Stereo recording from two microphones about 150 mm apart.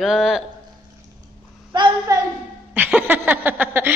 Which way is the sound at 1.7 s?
30° right (ahead or behind).